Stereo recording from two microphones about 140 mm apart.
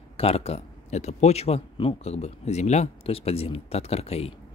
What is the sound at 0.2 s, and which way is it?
A man's voice, 45° left (ahead or behind).